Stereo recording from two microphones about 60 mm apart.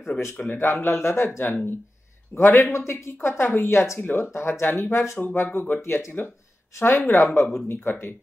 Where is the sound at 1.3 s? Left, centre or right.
Left.